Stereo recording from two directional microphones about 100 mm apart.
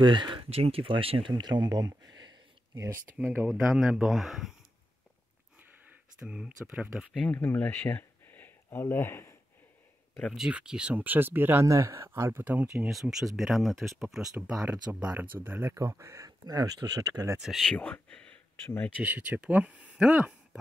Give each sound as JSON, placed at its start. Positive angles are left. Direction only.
{"t": 0.0, "sound": "speech", "side_deg": -55}
{"t": 1.3, "sound": "a sound", "side_deg": -45}
{"t": 3.1, "sound": "speech", "side_deg": -20}
{"t": 6.1, "sound": "speech", "side_deg": -10}
{"t": 7.3, "sound": "speech", "side_deg": 20}
{"t": 10.3, "sound": "speech", "side_deg": -5}
{"t": 17.4, "sound": "speech", "side_deg": 0}
{"t": 17.7, "sound": "speech", "side_deg": 15}
{"t": 18.9, "sound": "speech", "side_deg": -15}